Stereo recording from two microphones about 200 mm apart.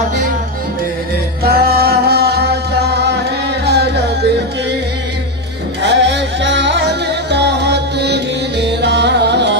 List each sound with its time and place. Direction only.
1.4 s music: 50° right (ahead or behind)
5.8 s music: 60° right (ahead or behind)